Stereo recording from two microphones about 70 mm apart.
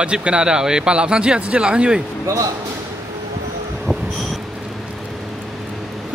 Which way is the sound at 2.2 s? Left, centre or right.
Right.